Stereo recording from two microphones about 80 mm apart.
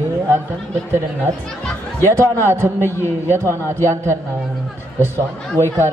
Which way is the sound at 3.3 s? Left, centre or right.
Right.